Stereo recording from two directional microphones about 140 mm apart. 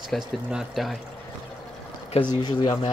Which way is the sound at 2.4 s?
35° left (ahead or behind).